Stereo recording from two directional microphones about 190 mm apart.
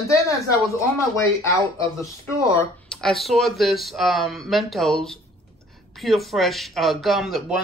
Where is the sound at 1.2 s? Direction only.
15° left (ahead or behind).